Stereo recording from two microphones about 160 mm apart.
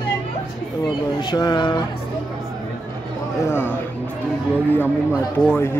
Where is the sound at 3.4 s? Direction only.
15° left (ahead or behind).